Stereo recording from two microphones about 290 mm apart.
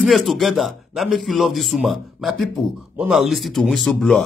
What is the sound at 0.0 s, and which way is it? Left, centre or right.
A man's voice, centre.